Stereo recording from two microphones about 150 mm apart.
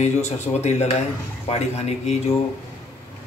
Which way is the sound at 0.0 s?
50° left (ahead or behind).